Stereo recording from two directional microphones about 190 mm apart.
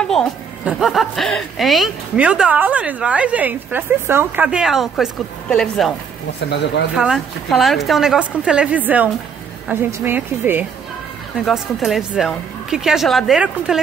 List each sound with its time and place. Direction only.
0.7 s speech: centre (ahead or behind)
6.5 s speech: 65° left (ahead or behind)
7.0 s a woman's voice: centre (ahead or behind)